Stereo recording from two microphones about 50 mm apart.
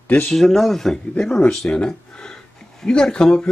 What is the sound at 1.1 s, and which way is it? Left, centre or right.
A man's voice, centre.